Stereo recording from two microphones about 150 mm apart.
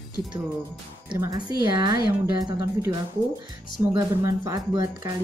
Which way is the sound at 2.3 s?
20° right (ahead or behind).